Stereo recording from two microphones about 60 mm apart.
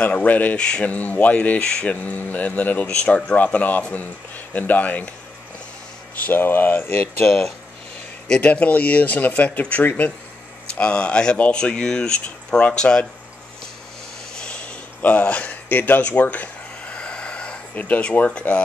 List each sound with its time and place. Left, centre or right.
0.0 s speech: left
0.6 s speech: centre
2.0 s speech: left
2.9 s speech: centre
6.1 s speech: left
7.2 s speech: centre
8.4 s speech: left
10.7 s speech: centre
14.3 s a sound: centre